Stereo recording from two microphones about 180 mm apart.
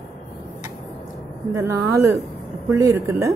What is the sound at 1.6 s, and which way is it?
A woman's voice, 15° right (ahead or behind).